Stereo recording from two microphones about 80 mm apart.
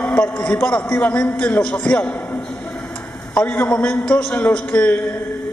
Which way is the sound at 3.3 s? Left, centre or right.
Left.